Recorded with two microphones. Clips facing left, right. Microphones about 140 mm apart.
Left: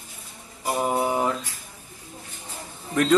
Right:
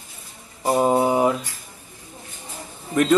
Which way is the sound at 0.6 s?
25° right (ahead or behind).